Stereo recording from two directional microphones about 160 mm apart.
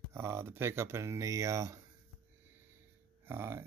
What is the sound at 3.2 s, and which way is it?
Speech, 15° right (ahead or behind).